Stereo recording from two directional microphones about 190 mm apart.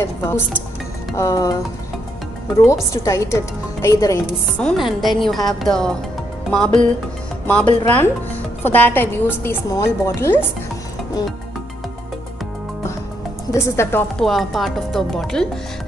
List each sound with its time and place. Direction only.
1.1 s a woman's voice: 15° left (ahead or behind)
2.6 s a woman's voice: 15° left (ahead or behind)
4.6 s a woman's voice: centre (ahead or behind)
13.5 s speech: 15° left (ahead or behind)